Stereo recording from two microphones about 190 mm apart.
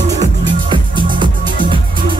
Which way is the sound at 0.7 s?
25° right (ahead or behind).